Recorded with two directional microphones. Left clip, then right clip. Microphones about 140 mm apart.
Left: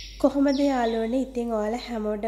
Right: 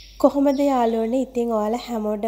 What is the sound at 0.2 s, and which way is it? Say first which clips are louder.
A woman's voice: right 4 dB; 40° right (ahead or behind).